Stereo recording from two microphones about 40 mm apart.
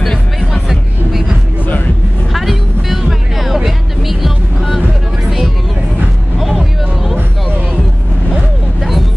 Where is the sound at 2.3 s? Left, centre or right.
Centre.